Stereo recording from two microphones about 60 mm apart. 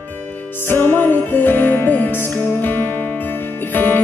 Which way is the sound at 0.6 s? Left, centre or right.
Left.